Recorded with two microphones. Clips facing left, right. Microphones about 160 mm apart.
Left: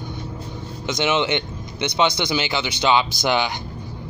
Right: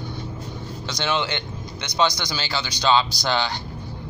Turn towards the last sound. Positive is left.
turn(degrees=15)  # may be behind; listen again after turning